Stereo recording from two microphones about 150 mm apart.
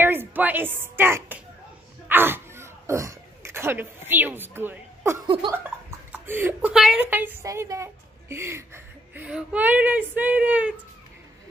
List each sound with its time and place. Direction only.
0.0 s a woman's voice: 15° right (ahead or behind)
2.0 s dog: 15° right (ahead or behind)
5.2 s a sound: 30° right (ahead or behind)
5.5 s speech: 15° right (ahead or behind)
6.7 s a woman's voice: 5° right (ahead or behind)